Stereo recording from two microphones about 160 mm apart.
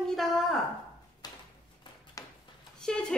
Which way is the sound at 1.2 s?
25° left (ahead or behind).